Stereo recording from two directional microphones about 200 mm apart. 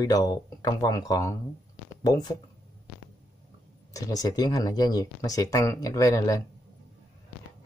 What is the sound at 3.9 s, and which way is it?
Speech, 15° left (ahead or behind).